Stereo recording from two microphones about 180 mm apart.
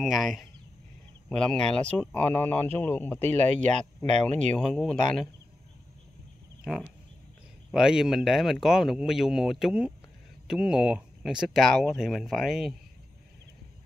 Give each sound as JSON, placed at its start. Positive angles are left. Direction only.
{"t": 0.0, "sound": "speech", "side_deg": 0}
{"t": 3.6, "sound": "speech", "side_deg": -40}
{"t": 4.6, "sound": "speech", "side_deg": 0}
{"t": 6.6, "sound": "speech", "side_deg": 0}